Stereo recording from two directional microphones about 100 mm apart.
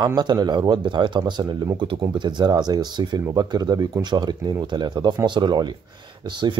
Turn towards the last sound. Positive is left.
turn(degrees=-50)  # may be behind; listen again after turning